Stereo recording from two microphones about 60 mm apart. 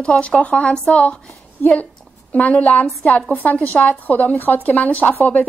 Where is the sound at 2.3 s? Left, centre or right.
Left.